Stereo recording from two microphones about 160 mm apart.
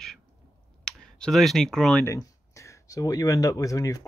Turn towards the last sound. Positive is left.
turn(degrees=20)  # may be behind; listen again after turning